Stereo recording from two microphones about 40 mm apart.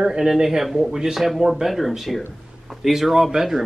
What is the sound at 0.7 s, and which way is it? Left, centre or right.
Speech, centre.